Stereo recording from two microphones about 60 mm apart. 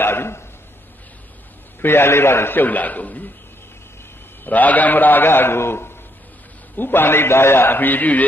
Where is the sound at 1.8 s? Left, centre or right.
Left.